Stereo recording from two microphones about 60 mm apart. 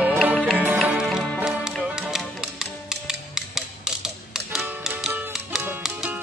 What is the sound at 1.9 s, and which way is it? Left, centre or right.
Music, centre.